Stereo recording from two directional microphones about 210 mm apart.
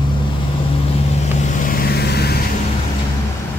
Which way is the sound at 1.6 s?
45° left (ahead or behind).